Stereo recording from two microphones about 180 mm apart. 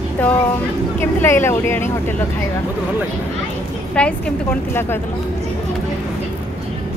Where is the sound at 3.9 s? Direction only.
5° left (ahead or behind).